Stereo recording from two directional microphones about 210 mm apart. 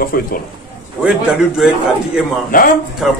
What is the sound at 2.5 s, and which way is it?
Speech, 40° left (ahead or behind).